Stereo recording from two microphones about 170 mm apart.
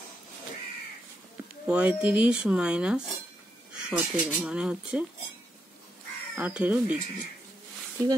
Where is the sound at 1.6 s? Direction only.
5° right (ahead or behind).